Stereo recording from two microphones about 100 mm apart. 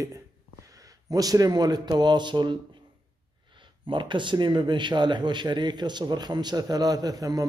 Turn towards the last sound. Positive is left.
turn(degrees=-40)  # may be behind; listen again after turning